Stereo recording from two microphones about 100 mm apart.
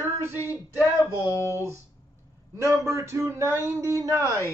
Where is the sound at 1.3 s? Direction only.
30° left (ahead or behind).